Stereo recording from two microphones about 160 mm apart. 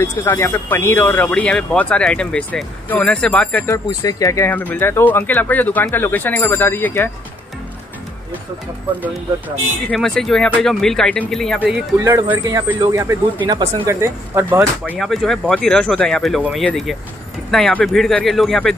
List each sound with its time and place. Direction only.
0.0 s speech: 15° left (ahead or behind)
9.8 s speech: 5° left (ahead or behind)
12.0 s speech: 20° right (ahead or behind)
15.0 s speech: centre (ahead or behind)